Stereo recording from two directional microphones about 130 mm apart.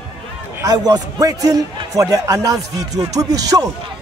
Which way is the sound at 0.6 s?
30° right (ahead or behind).